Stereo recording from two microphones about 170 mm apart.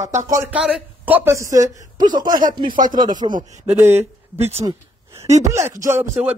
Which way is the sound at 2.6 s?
50° right (ahead or behind).